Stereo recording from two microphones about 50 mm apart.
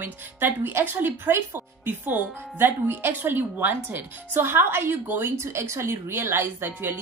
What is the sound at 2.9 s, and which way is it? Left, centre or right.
Speech, right.